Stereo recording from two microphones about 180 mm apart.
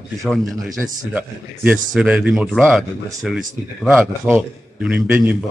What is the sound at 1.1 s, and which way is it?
A man's voice, 10° right (ahead or behind).